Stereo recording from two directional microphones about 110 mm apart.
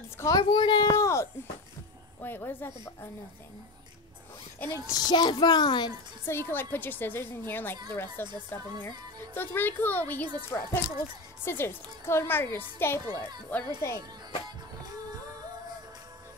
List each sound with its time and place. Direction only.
0.2 s a woman's voice: 40° left (ahead or behind)
0.8 s a woman's voice: 25° left (ahead or behind)
4.6 s a child's voice: 25° left (ahead or behind); by 5.9 s 40° left (ahead or behind)
6.2 s a woman's voice: 20° left (ahead or behind)
9.3 s a child's voice: 20° left (ahead or behind)
11.4 s a woman's voice: 20° left (ahead or behind)